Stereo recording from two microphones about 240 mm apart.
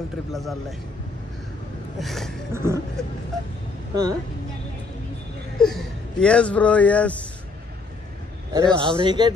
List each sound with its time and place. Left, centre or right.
0.3 s speech: centre
2.0 s speech: centre
2.5 s a man's voice: centre
3.9 s a woman's voice: centre
5.6 s speech: centre
8.5 s a man's voice: centre